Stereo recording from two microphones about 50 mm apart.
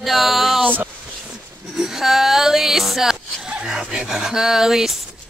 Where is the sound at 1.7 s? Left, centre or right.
Centre.